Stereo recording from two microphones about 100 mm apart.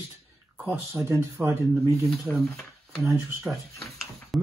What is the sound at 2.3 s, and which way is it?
Speech, centre (ahead or behind).